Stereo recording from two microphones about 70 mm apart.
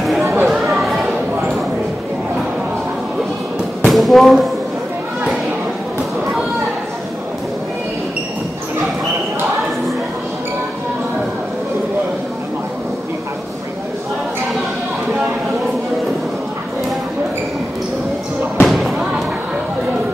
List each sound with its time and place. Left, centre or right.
0.2 s chatter: right
0.5 s chatter: centre
3.8 s a sound: centre
18.6 s music: centre